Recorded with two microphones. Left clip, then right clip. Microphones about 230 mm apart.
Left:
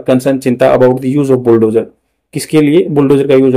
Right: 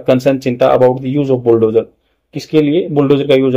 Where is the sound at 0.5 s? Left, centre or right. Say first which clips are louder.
Left 2 dB; left.